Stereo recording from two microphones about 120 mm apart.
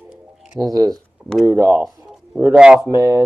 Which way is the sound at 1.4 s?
20° right (ahead or behind).